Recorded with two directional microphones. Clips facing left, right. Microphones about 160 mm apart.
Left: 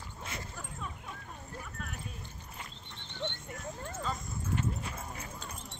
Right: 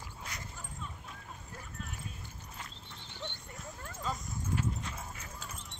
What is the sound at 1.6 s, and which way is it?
Dog, 60° left (ahead or behind).